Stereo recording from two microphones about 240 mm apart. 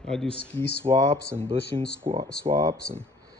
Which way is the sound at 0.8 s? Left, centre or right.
Right.